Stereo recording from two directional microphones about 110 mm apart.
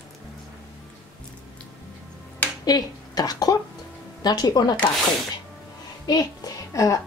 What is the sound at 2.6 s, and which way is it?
A woman's voice, 35° left (ahead or behind).